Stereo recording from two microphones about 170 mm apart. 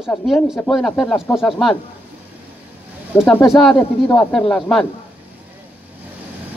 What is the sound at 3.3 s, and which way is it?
Speech, 15° left (ahead or behind).